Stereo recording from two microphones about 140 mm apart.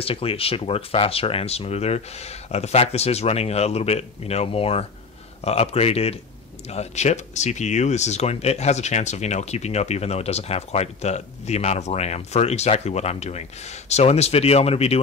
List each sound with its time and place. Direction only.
0.0 s speech: 40° left (ahead or behind)